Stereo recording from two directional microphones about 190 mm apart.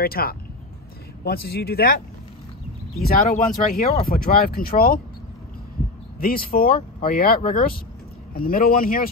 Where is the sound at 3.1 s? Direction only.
50° left (ahead or behind).